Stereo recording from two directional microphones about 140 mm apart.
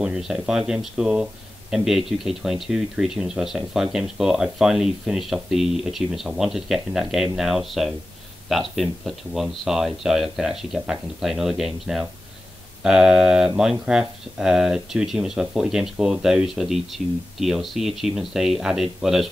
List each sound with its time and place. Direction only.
0.0 s speech: 5° right (ahead or behind)